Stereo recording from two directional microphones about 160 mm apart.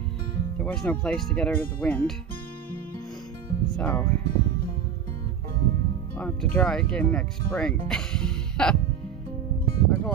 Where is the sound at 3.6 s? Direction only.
10° left (ahead or behind).